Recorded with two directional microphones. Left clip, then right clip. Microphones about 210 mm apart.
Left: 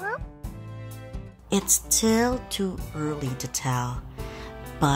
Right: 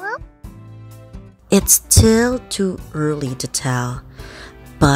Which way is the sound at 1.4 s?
25° right (ahead or behind).